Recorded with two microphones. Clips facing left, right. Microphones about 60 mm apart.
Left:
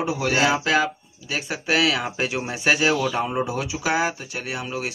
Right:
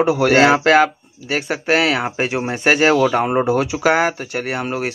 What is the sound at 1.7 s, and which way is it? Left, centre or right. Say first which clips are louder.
Speech: right 4 dB; right.